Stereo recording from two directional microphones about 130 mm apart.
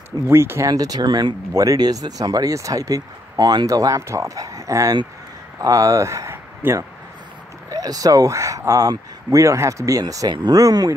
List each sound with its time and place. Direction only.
0.3 s speech: 20° right (ahead or behind)